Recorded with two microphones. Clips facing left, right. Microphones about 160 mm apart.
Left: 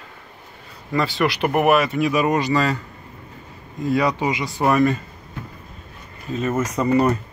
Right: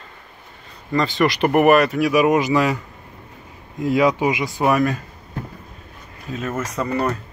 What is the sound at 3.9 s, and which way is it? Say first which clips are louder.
Speech: right 3 dB; 15° right (ahead or behind).